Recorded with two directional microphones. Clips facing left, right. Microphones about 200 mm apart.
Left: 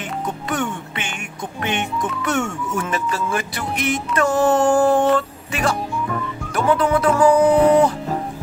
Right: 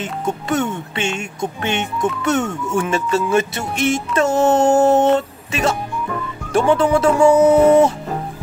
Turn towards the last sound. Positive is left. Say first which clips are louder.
# right 3 dB
turn(degrees=-25)  # may be behind; listen again after turning